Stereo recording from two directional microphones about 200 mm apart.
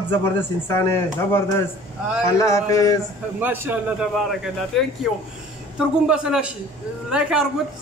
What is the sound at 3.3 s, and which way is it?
Speech, 10° right (ahead or behind).